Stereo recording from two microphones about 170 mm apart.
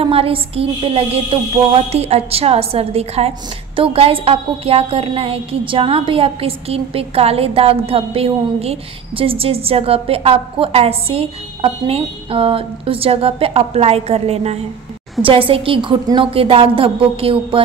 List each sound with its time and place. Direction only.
0.0 s speech: 35° right (ahead or behind)